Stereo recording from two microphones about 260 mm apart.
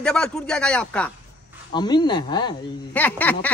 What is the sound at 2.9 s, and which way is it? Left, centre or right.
Speech, centre.